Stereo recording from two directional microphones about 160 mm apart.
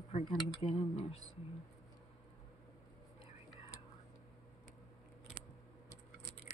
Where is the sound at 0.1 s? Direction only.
40° left (ahead or behind).